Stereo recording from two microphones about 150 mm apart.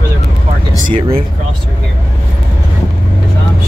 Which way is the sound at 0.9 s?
40° right (ahead or behind).